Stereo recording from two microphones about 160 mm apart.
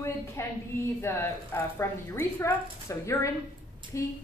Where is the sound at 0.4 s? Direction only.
15° left (ahead or behind).